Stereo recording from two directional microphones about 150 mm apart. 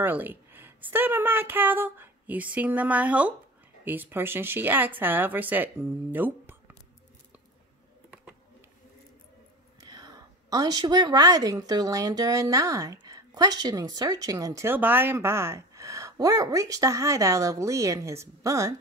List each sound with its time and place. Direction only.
0.0 s a woman's voice: 10° right (ahead or behind)
9.8 s a woman's voice: 25° right (ahead or behind)